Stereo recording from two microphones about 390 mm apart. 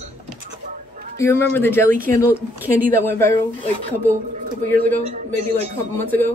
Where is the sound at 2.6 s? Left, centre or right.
Centre.